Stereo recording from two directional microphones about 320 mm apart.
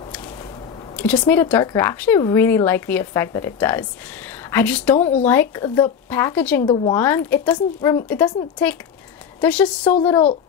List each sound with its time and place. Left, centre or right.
1.2 s a woman's voice: centre
4.9 s speech: centre
5.2 s speech: centre
9.4 s a woman's voice: centre